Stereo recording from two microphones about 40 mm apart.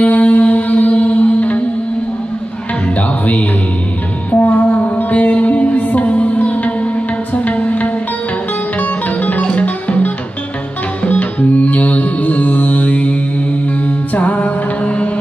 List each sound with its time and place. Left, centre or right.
0.0 s music: left
3.0 s music: left
5.2 s music: left
13.8 s mantra: left